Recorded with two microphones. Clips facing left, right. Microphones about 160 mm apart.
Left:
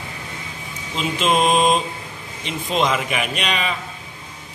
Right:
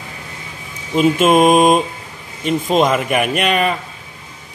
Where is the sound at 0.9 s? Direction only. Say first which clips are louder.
Right 8 dB; 50° right (ahead or behind).